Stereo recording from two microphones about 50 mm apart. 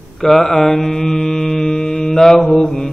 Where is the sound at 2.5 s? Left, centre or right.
Centre.